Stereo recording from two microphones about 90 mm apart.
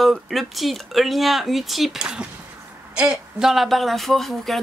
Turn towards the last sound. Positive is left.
turn(degrees=0)  # may be behind; listen again after turning